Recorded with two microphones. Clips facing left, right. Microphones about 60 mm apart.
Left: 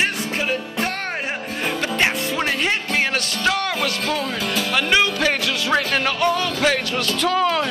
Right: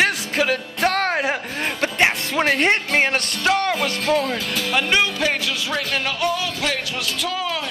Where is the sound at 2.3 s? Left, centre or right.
Right.